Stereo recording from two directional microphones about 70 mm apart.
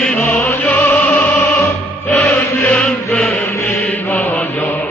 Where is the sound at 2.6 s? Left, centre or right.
Centre.